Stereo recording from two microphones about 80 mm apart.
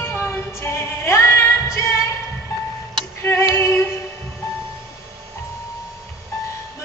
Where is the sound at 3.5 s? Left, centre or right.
Left.